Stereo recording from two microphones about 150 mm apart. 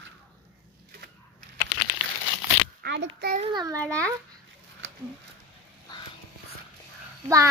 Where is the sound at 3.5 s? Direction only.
20° right (ahead or behind).